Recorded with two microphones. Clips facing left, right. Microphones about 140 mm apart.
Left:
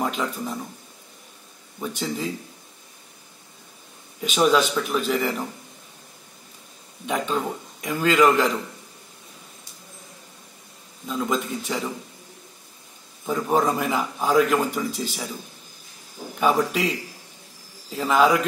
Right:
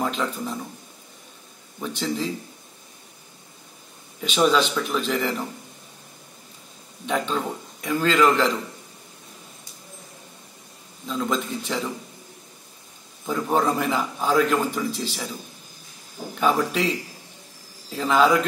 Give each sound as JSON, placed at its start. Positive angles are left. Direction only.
{"t": 0.0, "sound": "speech", "side_deg": 10}
{"t": 1.8, "sound": "a man's voice", "side_deg": 10}
{"t": 4.2, "sound": "a man's voice", "side_deg": 5}
{"t": 7.1, "sound": "a man's voice", "side_deg": 10}
{"t": 11.1, "sound": "a man's voice", "side_deg": 10}
{"t": 13.3, "sound": "a man's voice", "side_deg": 5}
{"t": 16.3, "sound": "a man's voice", "side_deg": 10}
{"t": 17.9, "sound": "speech", "side_deg": 5}